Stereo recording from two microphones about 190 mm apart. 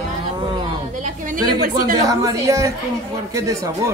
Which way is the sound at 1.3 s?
20° right (ahead or behind).